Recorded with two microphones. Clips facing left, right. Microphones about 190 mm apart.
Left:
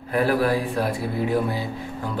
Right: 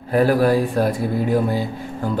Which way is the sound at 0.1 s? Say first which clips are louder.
Right 5 dB; 40° right (ahead or behind).